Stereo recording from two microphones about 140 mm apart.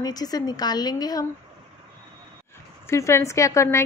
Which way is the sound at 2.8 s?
20° left (ahead or behind).